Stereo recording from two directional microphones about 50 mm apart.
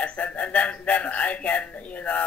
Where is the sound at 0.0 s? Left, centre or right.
Left.